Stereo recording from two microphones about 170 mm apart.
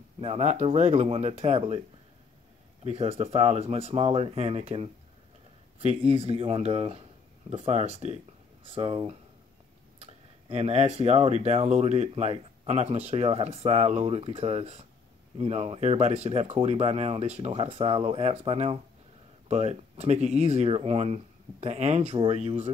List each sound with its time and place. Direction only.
0.2 s speech: 40° right (ahead or behind)
2.8 s speech: 35° right (ahead or behind)